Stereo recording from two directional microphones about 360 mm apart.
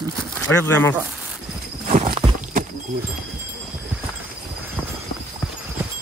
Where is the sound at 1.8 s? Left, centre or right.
Centre.